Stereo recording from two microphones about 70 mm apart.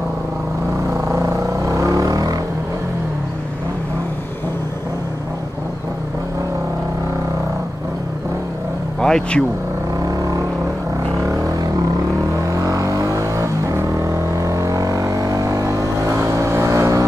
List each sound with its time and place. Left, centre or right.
1.0 s vehicle: right
9.0 s speech: centre
10.0 s vehicle: right
11.2 s a sound: right
12.5 s vehicle: right